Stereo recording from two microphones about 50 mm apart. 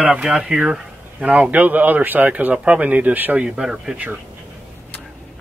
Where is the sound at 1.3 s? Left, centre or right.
Right.